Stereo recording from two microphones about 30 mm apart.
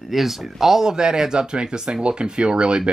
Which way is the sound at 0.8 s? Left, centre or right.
Right.